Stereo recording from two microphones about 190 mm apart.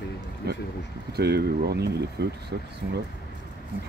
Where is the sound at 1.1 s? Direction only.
60° right (ahead or behind).